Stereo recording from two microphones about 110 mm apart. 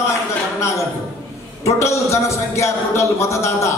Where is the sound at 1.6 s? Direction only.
25° left (ahead or behind).